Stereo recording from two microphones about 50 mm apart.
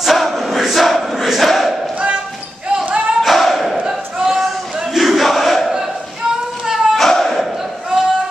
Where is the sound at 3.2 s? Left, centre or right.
Centre.